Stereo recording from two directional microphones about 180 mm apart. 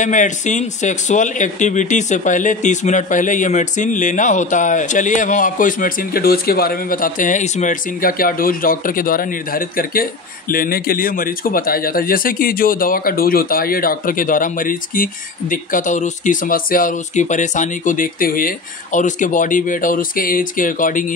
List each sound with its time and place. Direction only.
0.0 s speech: 45° left (ahead or behind)